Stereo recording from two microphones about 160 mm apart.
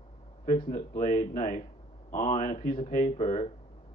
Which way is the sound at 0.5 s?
35° left (ahead or behind).